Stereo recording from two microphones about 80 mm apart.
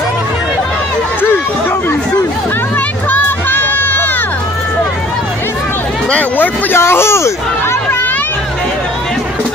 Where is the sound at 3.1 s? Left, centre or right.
Left.